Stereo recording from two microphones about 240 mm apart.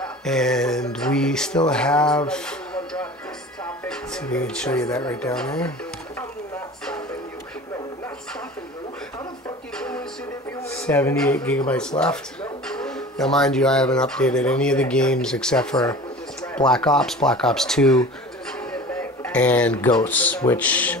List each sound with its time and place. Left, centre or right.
0.0 s speech: centre
9.8 s music: centre
10.7 s speech: centre
18.7 s a sound: centre
19.9 s speech: centre
20.2 s speech: centre